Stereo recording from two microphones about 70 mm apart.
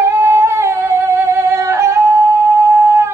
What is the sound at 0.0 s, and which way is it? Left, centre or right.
Singing, right.